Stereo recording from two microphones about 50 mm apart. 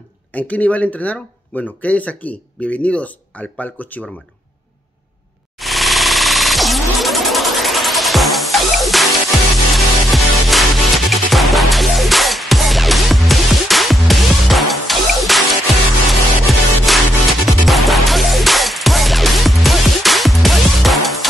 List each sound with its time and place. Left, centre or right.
0.3 s speech: left
5.6 s a sound: centre
16.1 s music: centre